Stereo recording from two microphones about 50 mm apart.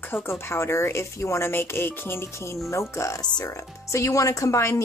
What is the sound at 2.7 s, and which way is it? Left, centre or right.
Speech, left.